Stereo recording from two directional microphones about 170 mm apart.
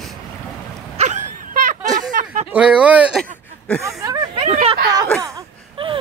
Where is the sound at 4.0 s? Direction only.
20° right (ahead or behind).